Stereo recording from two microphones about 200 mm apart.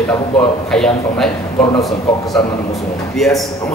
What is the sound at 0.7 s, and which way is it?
Speech, 5° left (ahead or behind).